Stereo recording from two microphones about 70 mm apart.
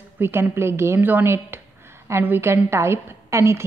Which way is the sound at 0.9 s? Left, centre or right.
Right.